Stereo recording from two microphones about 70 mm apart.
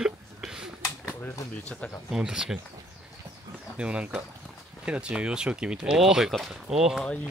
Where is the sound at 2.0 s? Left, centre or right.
Centre.